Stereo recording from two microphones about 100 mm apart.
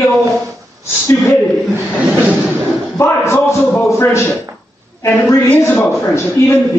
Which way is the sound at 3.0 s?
25° left (ahead or behind).